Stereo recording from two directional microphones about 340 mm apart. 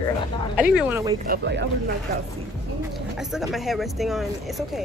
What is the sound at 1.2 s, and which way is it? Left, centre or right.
Speech, right.